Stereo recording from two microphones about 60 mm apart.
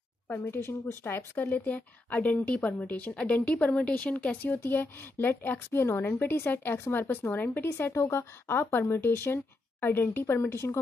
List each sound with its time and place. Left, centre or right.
0.5 s speech: left
1.3 s a woman's voice: left
7.7 s speech: left